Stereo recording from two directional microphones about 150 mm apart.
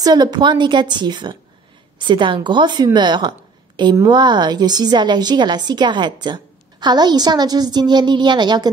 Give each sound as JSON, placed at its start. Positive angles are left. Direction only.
{"t": 0.0, "sound": "a woman's voice", "side_deg": -25}